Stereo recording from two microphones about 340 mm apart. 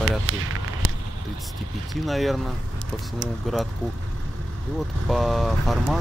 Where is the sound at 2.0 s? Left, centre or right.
Centre.